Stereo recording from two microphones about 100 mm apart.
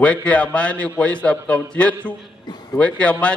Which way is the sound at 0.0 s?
15° left (ahead or behind).